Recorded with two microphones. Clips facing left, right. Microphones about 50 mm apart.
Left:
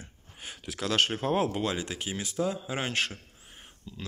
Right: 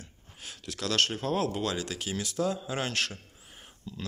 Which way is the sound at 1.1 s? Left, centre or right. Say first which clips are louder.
Left 2 dB; centre.